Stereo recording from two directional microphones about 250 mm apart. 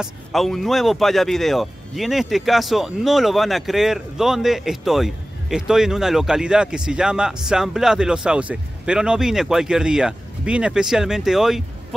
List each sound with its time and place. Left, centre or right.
0.0 s speech: centre